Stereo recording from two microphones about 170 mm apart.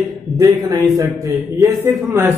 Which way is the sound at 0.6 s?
20° right (ahead or behind).